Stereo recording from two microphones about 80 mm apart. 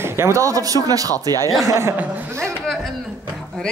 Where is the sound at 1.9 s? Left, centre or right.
Right.